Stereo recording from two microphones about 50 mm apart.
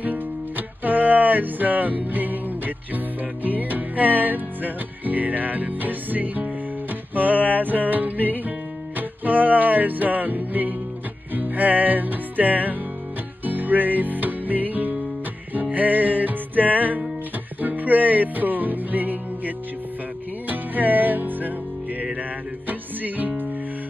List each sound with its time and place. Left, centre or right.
0.0 s music: right
22.7 s music: right